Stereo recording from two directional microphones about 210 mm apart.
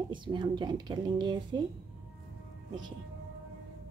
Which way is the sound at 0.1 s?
20° right (ahead or behind).